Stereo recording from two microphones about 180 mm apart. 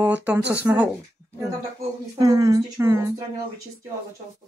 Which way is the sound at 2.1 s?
20° right (ahead or behind).